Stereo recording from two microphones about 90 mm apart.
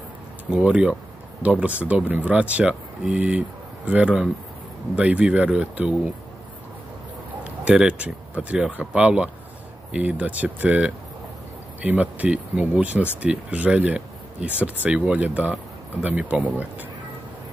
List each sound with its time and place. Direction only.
0.5 s speech: 15° right (ahead or behind)
7.4 s speech: 15° right (ahead or behind)